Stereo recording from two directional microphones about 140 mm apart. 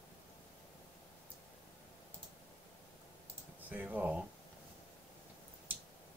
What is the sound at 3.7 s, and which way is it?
Speech, 10° right (ahead or behind).